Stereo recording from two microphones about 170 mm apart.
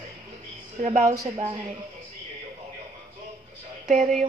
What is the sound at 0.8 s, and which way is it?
Speech, 40° right (ahead or behind).